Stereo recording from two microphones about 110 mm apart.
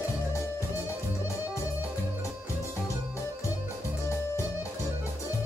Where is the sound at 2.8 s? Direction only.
25° left (ahead or behind).